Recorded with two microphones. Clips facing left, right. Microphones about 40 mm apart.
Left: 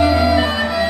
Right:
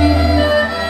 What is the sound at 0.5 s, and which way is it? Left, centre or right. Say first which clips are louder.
Music: right 3 dB; centre.